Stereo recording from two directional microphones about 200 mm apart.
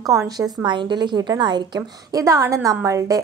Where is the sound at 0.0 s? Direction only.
15° right (ahead or behind).